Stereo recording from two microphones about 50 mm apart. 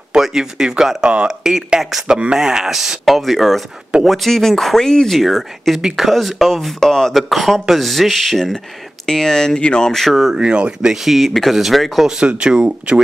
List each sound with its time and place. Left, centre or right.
0.1 s speech: centre
5.8 s speech: centre
10.3 s speech: centre
11.1 s speech: centre
12.2 s speech: centre